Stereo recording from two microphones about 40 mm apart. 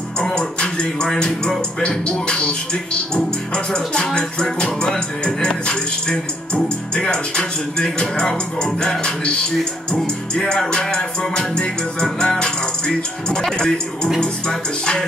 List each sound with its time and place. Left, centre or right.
0.2 s music: centre
9.9 s music: centre